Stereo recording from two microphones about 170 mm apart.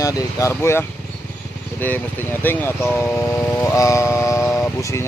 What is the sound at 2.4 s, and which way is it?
Speech, 10° left (ahead or behind).